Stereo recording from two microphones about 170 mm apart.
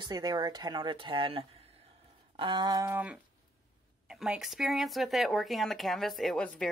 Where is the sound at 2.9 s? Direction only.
10° right (ahead or behind).